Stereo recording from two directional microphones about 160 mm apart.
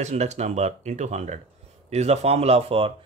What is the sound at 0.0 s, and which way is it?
Speech, 45° right (ahead or behind).